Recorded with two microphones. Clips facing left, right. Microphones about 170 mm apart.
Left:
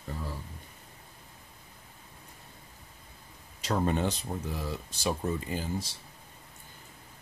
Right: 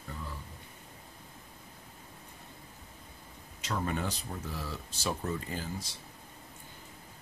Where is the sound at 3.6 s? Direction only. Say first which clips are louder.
Left 6 dB; 30° left (ahead or behind); by 5.6 s 15° left (ahead or behind).